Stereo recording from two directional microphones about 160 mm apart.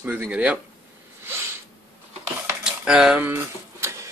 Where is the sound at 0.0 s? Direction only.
10° right (ahead or behind).